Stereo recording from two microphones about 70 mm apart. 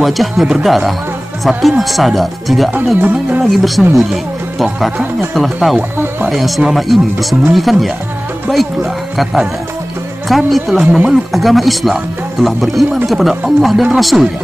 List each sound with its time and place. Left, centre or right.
0.0 s speech: centre
3.0 s speech: right
3.4 s speech: centre